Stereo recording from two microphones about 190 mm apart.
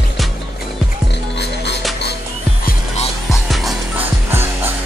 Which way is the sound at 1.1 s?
65° left (ahead or behind).